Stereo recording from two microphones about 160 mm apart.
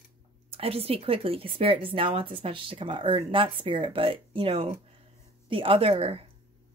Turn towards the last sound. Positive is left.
turn(degrees=-35)  # may be behind; listen again after turning